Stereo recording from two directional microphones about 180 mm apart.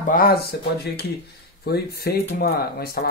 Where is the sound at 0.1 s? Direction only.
55° left (ahead or behind).